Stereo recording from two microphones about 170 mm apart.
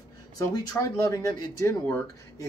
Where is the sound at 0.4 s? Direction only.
20° left (ahead or behind).